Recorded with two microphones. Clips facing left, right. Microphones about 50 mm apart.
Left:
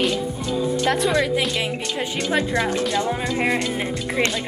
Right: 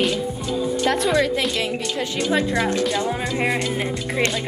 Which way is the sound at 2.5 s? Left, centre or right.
Centre.